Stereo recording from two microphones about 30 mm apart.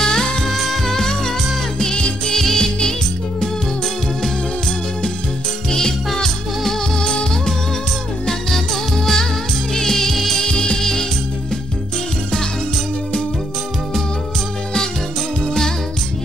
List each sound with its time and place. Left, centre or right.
0.0 s music: left
0.5 s music: centre
0.8 s music: centre
2.0 s music: left
2.3 s music: centre
5.7 s music: left
7.0 s music: left
8.5 s music: centre
10.4 s music: left
10.8 s music: centre
15.4 s music: left